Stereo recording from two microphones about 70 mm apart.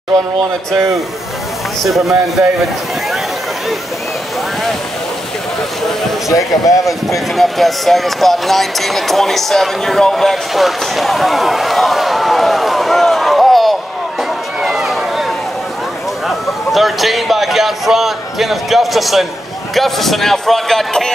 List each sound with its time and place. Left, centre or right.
1.9 s a man's voice: centre
6.2 s speech: left
7.3 s speech: centre
14.6 s a sound: centre
16.3 s a man's voice: centre